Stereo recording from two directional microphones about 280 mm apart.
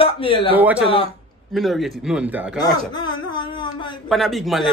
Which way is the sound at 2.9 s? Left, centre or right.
Centre.